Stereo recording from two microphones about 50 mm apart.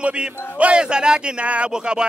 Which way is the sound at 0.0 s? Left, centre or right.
Right.